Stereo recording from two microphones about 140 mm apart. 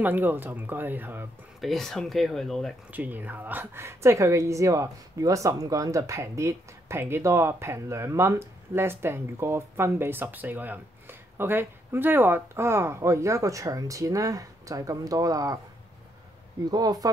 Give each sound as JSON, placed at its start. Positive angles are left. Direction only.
{"t": 0.0, "sound": "speech", "side_deg": -15}
{"t": 1.6, "sound": "speech", "side_deg": 0}
{"t": 2.9, "sound": "a woman's voice", "side_deg": -10}
{"t": 16.7, "sound": "a woman's voice", "side_deg": -30}